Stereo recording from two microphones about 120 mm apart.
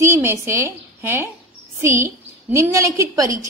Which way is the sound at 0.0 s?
20° right (ahead or behind).